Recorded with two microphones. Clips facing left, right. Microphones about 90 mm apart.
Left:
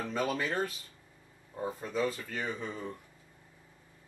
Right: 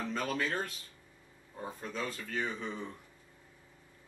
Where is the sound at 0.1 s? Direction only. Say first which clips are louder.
Left 3 dB; 5° left (ahead or behind).